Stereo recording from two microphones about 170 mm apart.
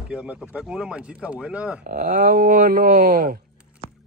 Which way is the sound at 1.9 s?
50° right (ahead or behind).